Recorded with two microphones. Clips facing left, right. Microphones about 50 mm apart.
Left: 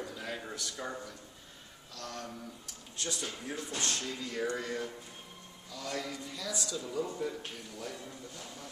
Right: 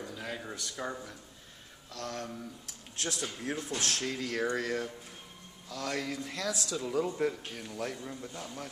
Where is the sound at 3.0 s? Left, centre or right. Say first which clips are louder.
Right 2 dB; right.